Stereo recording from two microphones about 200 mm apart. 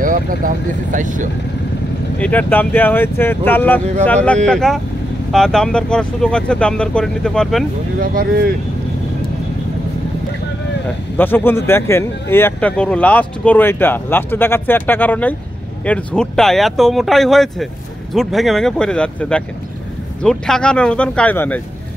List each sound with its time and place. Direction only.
0.0 s speech: 45° right (ahead or behind)
2.1 s speech: 5° left (ahead or behind)
8.0 s speech: 45° right (ahead or behind)
11.1 s speech: 10° left (ahead or behind)